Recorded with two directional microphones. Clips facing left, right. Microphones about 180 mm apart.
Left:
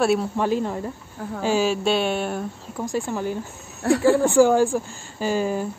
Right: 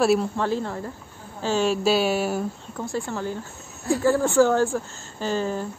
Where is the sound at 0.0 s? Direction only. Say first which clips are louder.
Even; centre (ahead or behind).